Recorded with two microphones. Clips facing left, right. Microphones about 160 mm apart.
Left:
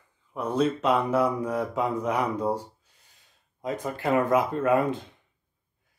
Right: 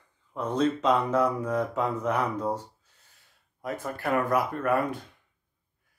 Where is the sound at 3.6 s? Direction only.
20° left (ahead or behind).